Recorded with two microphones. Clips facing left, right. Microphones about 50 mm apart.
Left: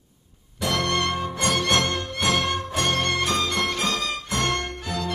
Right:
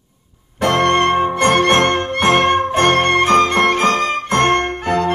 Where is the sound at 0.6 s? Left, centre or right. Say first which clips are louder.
Right 10 dB; right.